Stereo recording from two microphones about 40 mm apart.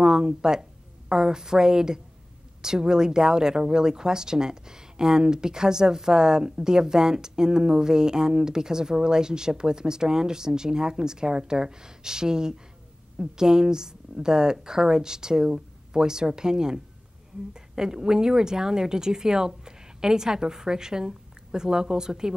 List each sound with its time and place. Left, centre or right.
0.0 s a woman's voice: centre